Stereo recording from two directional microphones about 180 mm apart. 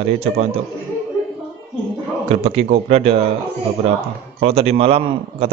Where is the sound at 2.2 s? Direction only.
35° right (ahead or behind).